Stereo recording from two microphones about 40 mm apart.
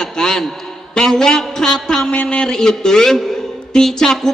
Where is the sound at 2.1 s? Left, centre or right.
Left.